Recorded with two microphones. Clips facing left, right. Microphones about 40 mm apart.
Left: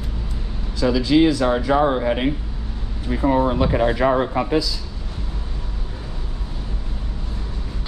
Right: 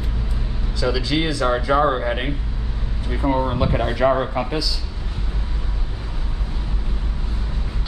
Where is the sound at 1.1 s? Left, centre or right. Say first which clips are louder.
Left 6 dB; right.